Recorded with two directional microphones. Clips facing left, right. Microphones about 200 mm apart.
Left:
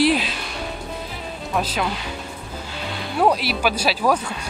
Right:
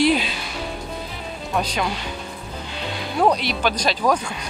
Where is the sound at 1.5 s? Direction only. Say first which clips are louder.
Even; centre (ahead or behind).